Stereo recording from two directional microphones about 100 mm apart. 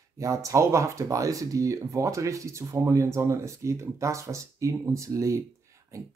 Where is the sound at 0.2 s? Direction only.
30° right (ahead or behind).